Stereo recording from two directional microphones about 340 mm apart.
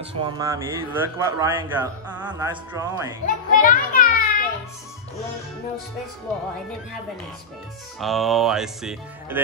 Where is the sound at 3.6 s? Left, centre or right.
Left.